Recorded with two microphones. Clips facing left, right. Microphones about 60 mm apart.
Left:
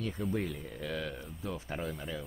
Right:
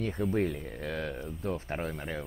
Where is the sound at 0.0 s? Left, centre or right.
Right.